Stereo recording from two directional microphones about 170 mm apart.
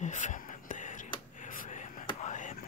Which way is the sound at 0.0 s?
45° left (ahead or behind).